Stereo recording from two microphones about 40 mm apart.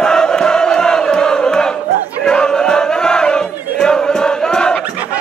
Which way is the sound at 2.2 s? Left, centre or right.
Centre.